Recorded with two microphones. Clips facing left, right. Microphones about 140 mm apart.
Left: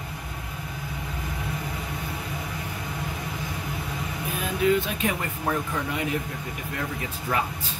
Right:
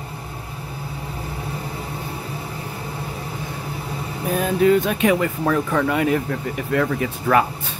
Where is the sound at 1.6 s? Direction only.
30° right (ahead or behind).